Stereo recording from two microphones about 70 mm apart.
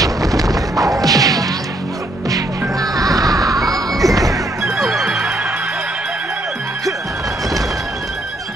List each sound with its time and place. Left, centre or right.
0.0 s a sound: right
2.3 s music: right
4.6 s music: centre